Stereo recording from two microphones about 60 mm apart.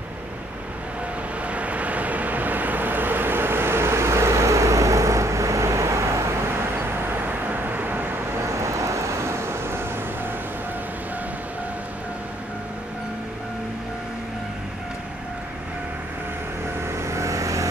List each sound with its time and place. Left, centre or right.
1.5 s vehicle: right
7.2 s vehicle: right
8.4 s vehicle: right
16.9 s vehicle: right